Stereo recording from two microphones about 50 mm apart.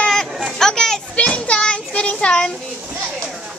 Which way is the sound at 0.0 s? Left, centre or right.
Centre.